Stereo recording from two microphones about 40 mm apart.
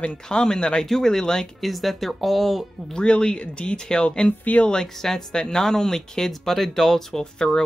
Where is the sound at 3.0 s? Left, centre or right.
Left.